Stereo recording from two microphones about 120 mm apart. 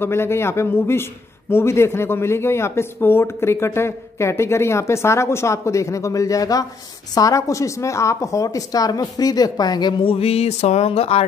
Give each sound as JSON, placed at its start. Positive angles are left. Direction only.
{"t": 0.0, "sound": "a woman's voice", "side_deg": 20}